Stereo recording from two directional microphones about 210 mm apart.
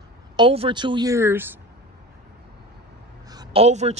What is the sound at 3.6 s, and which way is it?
Speech, 30° right (ahead or behind).